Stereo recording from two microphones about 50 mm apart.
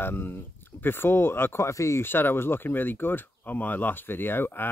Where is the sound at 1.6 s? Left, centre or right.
Left.